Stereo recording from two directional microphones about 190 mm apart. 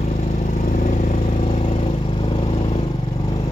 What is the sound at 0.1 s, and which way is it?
Vehicle, 40° left (ahead or behind).